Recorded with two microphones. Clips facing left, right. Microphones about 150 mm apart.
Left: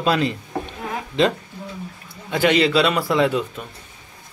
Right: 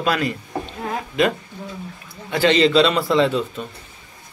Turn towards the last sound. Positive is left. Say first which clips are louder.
# right 1 dB
turn(degrees=10)  # may be behind; listen again after turning